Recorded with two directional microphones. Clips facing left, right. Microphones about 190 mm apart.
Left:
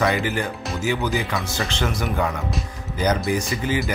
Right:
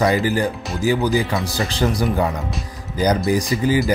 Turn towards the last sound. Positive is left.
turn(degrees=-35)  # may be behind; listen again after turning